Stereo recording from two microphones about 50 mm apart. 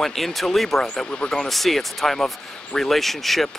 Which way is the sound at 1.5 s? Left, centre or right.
Centre.